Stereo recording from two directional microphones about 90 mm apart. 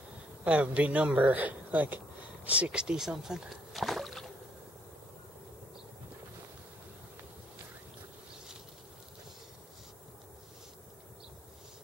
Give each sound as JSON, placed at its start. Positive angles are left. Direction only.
{"t": 0.4, "sound": "a man's voice", "side_deg": -15}